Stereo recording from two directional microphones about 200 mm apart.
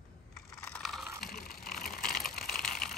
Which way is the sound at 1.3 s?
50° left (ahead or behind).